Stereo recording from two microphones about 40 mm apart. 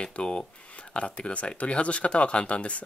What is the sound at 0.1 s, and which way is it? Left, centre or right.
Speech, left.